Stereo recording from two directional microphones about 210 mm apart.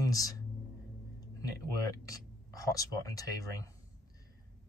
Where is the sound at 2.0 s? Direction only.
15° left (ahead or behind).